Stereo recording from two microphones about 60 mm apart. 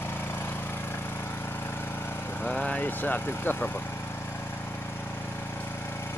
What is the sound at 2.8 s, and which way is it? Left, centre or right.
Speech, left.